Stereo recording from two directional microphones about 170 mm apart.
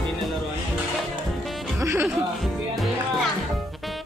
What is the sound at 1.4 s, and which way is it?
Music, centre (ahead or behind).